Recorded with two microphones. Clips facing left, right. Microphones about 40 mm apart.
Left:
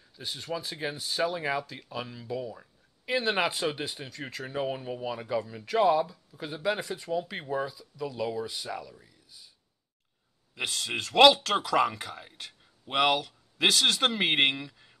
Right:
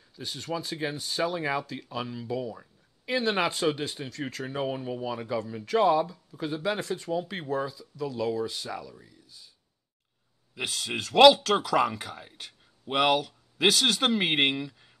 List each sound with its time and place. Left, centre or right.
0.1 s speech: centre
10.5 s speech: centre